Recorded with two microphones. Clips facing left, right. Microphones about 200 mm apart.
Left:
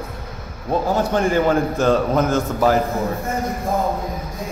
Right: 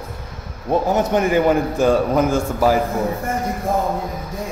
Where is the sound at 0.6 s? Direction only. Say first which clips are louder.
Right 2 dB; 15° right (ahead or behind).